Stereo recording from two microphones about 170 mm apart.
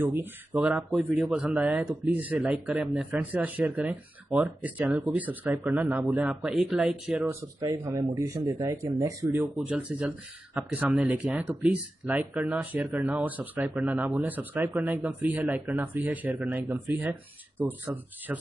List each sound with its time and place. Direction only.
0.0 s speech: 10° right (ahead or behind)
7.6 s speech: 20° right (ahead or behind)